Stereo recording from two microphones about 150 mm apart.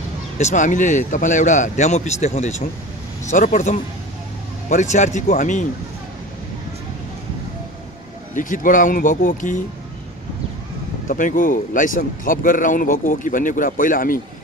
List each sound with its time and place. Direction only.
0.4 s speech: 55° left (ahead or behind)
8.4 s speech: 60° left (ahead or behind)
11.1 s speech: 60° left (ahead or behind)